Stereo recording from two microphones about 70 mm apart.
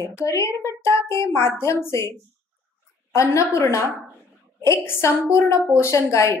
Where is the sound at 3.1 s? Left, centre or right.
Left.